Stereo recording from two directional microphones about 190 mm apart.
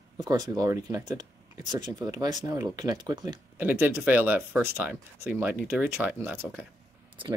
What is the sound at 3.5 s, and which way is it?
Speech, 10° right (ahead or behind).